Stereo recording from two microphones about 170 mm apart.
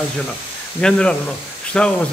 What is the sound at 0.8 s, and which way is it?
Speech, 5° left (ahead or behind).